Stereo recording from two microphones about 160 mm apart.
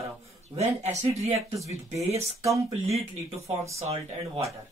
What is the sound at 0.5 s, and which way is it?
Speech, 40° right (ahead or behind).